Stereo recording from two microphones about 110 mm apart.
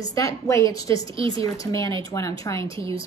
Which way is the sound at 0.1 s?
30° left (ahead or behind).